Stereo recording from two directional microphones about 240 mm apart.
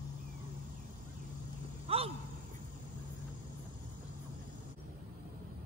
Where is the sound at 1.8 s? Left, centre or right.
Right.